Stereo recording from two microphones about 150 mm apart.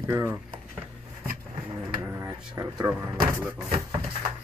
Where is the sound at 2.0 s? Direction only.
15° right (ahead or behind).